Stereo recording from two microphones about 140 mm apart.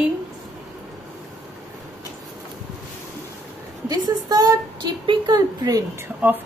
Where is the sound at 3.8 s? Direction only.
25° right (ahead or behind).